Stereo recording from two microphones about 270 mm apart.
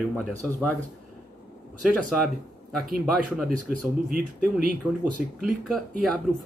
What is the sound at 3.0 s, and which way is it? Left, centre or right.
Speech, centre.